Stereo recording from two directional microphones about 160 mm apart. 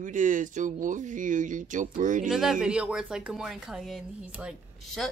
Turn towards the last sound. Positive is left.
turn(degrees=5)  # may be behind; listen again after turning